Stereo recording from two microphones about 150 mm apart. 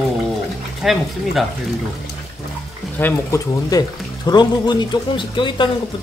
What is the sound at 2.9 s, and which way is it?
Speech, 15° left (ahead or behind).